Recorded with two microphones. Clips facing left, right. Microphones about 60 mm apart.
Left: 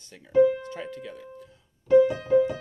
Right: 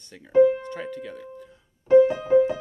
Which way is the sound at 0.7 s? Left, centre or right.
Centre.